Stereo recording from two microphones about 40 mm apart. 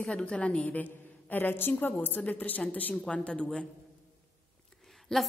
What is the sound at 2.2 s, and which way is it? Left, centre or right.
Speech, left.